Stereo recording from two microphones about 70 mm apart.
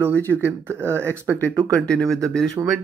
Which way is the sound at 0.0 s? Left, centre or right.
Right.